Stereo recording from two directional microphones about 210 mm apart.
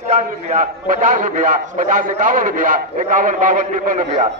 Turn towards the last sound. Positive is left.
turn(degrees=-35)  # may be behind; listen again after turning